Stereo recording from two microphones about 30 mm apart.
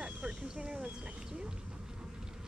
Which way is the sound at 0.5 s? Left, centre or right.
Right.